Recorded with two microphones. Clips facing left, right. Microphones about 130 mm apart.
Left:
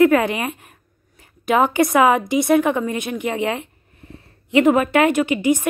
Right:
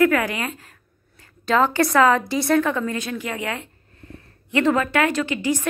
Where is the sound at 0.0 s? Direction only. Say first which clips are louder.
Left 4 dB; 25° left (ahead or behind).